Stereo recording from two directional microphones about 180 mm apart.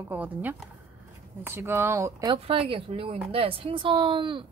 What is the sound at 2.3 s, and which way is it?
A woman's voice, 30° right (ahead or behind).